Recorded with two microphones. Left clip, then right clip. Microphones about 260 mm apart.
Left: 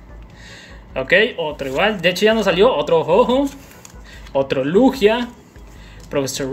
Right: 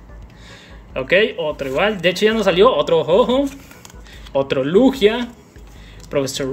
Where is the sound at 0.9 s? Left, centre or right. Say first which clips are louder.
Left 1 dB; centre.